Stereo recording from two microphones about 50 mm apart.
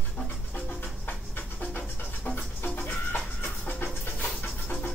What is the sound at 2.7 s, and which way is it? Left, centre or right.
Music, left.